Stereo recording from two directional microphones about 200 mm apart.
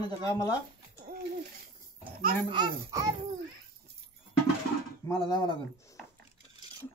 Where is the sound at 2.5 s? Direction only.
20° right (ahead or behind).